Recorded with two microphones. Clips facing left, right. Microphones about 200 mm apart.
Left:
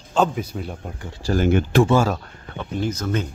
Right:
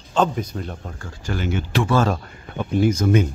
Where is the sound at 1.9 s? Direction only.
10° left (ahead or behind).